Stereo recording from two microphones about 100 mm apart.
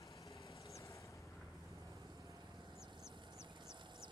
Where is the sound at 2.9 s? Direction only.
50° right (ahead or behind).